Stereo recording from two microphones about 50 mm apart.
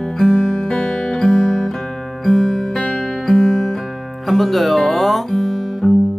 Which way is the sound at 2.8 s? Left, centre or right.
Centre.